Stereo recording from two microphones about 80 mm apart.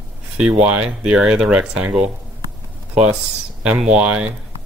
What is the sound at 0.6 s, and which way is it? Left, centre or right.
Speech, centre.